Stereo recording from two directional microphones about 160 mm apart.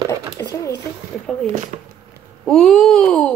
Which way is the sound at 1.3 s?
5° left (ahead or behind).